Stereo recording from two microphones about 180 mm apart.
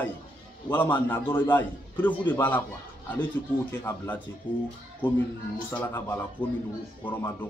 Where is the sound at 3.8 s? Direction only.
10° left (ahead or behind).